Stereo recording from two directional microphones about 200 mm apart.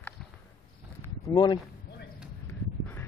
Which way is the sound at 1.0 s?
20° left (ahead or behind).